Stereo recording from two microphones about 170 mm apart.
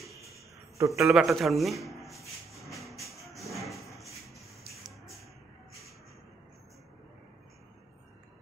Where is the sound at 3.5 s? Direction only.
Centre (ahead or behind).